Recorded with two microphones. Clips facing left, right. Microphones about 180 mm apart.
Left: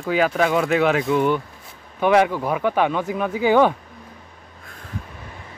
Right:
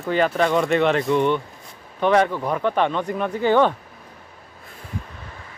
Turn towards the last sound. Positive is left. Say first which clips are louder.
# left 1 dB
turn(degrees=10)  # may be behind; listen again after turning